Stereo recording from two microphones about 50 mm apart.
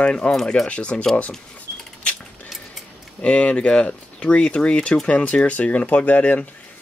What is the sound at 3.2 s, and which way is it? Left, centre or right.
Speech, left.